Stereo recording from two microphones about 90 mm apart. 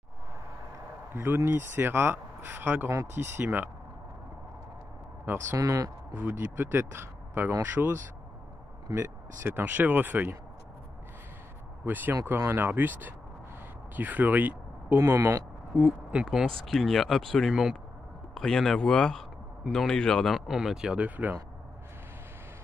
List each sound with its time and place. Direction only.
1.1 s speech: 25° right (ahead or behind)
5.2 s speech: 25° right (ahead or behind)
5.6 s speech: 40° right (ahead or behind)
6.1 s speech: 20° right (ahead or behind)
8.9 s speech: 30° right (ahead or behind)
11.8 s speech: 20° right (ahead or behind)
15.0 s speech: 30° right (ahead or behind)
15.7 s speech: 10° right (ahead or behind)